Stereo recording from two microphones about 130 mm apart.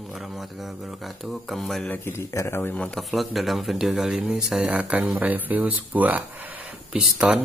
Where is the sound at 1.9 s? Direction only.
20° left (ahead or behind); by 7.4 s 5° right (ahead or behind).